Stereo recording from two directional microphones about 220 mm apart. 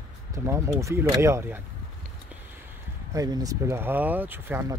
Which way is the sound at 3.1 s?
15° right (ahead or behind).